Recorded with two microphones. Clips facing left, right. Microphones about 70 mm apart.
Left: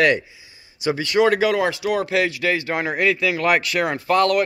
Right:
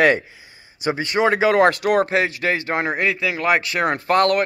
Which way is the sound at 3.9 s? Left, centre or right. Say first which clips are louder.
Even; right.